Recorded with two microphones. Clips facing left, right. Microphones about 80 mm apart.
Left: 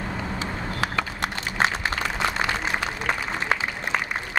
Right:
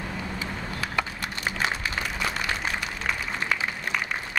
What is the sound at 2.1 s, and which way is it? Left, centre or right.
Applause, left.